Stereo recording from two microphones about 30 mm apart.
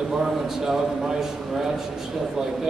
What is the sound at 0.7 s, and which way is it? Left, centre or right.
A man's voice, centre.